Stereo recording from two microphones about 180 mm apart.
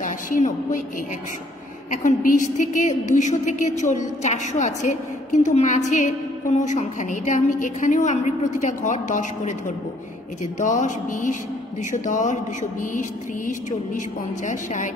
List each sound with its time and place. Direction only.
0.0 s a woman's voice: 45° left (ahead or behind)
1.9 s a woman's voice: 45° left (ahead or behind)
13.5 s a woman's voice: 45° left (ahead or behind)